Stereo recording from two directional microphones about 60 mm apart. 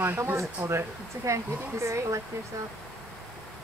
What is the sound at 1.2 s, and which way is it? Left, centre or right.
Speech, right.